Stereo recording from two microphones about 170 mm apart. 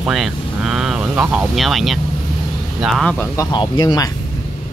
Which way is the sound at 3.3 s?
20° left (ahead or behind).